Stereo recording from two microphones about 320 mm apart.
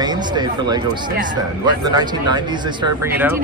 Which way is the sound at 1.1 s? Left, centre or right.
Right.